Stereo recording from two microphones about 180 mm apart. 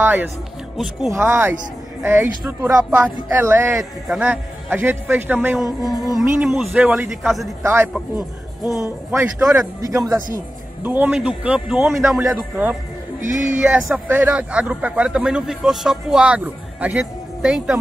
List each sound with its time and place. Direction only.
0.0 s a man's voice: 10° right (ahead or behind)
7.6 s a man's voice: 15° right (ahead or behind)